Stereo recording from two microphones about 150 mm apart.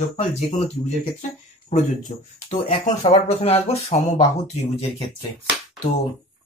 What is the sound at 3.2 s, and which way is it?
Speech, 40° left (ahead or behind).